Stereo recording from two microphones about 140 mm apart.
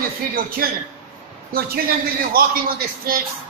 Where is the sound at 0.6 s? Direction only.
90° right.